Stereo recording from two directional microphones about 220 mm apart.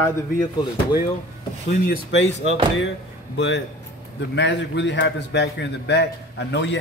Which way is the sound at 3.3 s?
55° left (ahead or behind).